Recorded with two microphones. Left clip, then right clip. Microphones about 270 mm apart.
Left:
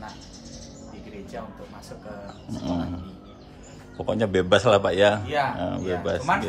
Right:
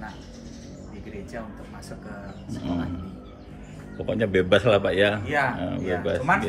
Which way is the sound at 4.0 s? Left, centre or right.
Centre.